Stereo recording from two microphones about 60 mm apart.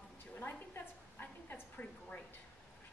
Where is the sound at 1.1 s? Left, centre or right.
Left.